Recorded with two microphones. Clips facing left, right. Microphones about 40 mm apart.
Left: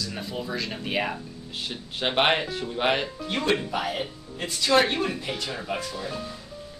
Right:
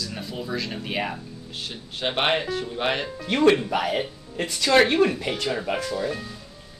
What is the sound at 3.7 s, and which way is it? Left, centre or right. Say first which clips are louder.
Speech: right 4 dB; right.